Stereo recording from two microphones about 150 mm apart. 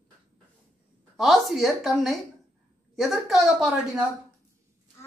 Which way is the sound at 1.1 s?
Centre (ahead or behind).